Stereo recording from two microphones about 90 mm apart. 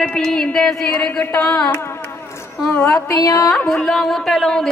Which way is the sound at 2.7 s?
30° left (ahead or behind).